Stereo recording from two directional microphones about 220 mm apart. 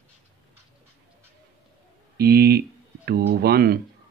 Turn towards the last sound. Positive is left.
turn(degrees=-45)  # may be behind; listen again after turning